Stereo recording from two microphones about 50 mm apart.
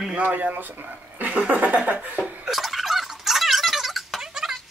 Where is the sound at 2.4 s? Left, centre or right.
Centre.